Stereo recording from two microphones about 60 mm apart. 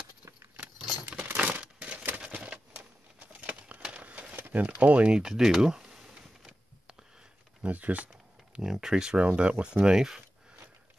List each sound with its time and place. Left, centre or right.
1.3 s crumpling: right
2.7 s a sound: right; by 7.1 s centre
7.6 s speech: right
8.1 s speech: centre